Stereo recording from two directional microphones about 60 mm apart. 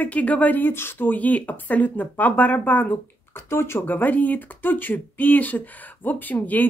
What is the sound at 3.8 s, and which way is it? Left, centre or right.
Speech, left.